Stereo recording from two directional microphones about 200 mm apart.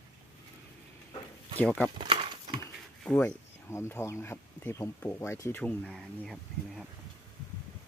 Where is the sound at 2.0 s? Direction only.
25° right (ahead or behind).